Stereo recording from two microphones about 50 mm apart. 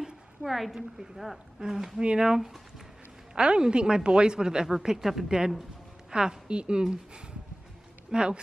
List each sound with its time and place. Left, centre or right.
0.4 s a woman's voice: centre